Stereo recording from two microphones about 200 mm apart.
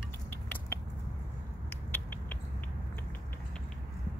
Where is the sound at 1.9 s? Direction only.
10° left (ahead or behind).